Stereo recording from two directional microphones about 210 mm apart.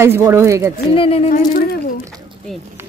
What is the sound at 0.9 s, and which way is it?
Speech, 25° left (ahead or behind).